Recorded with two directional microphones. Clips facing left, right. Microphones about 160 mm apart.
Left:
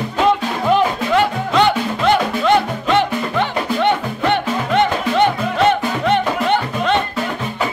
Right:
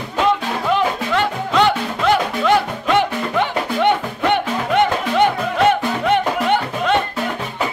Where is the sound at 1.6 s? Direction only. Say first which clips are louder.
Left 1 dB; 5° right (ahead or behind).